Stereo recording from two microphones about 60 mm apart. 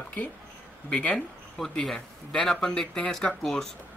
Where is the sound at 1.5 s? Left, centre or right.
Centre.